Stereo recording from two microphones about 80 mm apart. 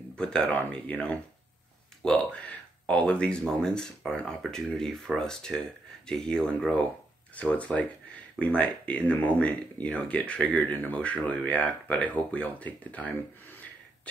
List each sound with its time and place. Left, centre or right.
0.1 s speech: centre